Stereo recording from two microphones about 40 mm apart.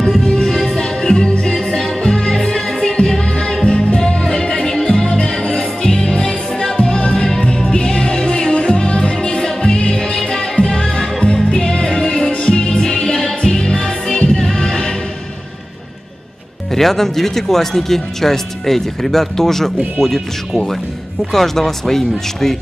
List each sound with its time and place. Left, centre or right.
0.2 s music: centre
12.3 s music: left
16.7 s speech: centre
21.3 s speech: centre